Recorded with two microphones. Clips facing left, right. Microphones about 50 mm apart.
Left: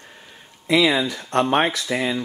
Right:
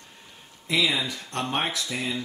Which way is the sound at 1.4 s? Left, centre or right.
Left.